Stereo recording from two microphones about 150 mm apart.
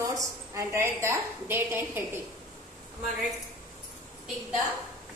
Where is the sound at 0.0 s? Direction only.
20° right (ahead or behind).